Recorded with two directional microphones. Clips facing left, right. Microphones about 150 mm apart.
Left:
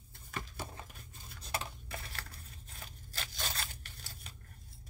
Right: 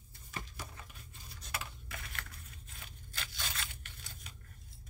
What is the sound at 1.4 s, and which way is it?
Tearing, 30° left (ahead or behind).